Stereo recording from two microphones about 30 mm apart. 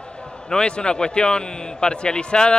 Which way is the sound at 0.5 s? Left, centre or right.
Left.